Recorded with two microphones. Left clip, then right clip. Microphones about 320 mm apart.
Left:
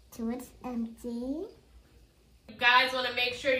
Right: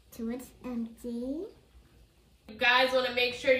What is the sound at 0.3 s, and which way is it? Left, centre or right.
Speech, centre.